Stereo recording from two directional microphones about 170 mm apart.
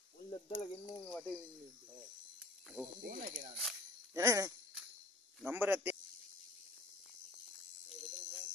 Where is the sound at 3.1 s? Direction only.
50° right (ahead or behind).